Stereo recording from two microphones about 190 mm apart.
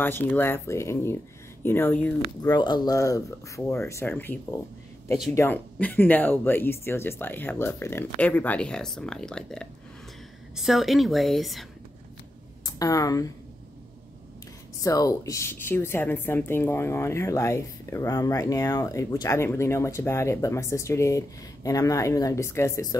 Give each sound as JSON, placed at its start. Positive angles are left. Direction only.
{"t": 0.0, "sound": "a woman's voice", "side_deg": 10}
{"t": 2.4, "sound": "a woman's voice", "side_deg": 20}
{"t": 12.6, "sound": "speech", "side_deg": 20}
{"t": 14.8, "sound": "a woman's voice", "side_deg": 15}